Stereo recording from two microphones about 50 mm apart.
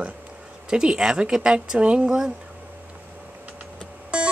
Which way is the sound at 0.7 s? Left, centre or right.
Centre.